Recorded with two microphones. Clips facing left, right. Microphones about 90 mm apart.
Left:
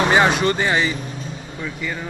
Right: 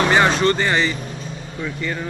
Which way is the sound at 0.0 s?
10° left (ahead or behind).